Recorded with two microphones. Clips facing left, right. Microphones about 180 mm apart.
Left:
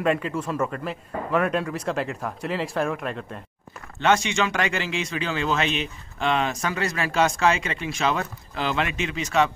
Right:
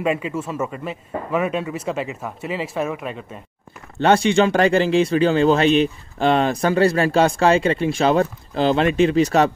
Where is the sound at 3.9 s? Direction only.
35° right (ahead or behind).